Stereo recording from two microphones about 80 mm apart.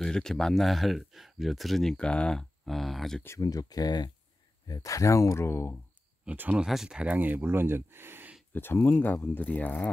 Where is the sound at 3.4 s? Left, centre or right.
Left.